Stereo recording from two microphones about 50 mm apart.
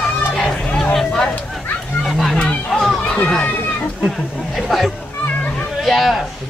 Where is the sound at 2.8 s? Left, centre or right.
Centre.